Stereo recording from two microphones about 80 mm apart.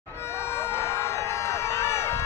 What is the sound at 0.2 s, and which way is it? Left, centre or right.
Music, left.